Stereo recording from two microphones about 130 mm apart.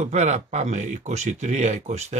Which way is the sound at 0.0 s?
60° right (ahead or behind).